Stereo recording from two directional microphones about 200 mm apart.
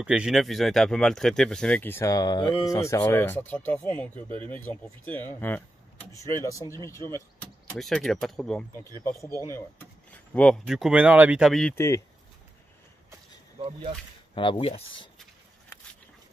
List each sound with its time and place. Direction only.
0.0 s speech: 5° right (ahead or behind); by 6.8 s 15° left (ahead or behind)
7.7 s speech: centre (ahead or behind)
10.1 s speech: 5° left (ahead or behind)
11.7 s speech: 15° left (ahead or behind)
13.6 s speech: 25° right (ahead or behind)
14.3 s speech: 25° left (ahead or behind)